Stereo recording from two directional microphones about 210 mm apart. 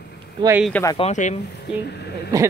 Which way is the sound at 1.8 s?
50° left (ahead or behind).